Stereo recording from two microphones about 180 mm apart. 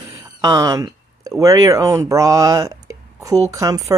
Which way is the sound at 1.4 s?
20° right (ahead or behind).